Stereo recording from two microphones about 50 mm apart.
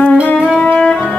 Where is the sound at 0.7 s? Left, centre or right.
Centre.